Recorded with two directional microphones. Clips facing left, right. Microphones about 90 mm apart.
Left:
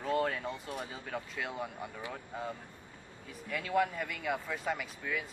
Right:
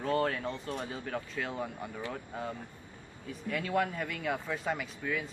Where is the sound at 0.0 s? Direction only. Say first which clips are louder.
Right 2 dB; 5° left (ahead or behind).